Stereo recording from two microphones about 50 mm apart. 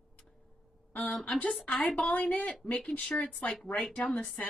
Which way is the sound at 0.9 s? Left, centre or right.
Left.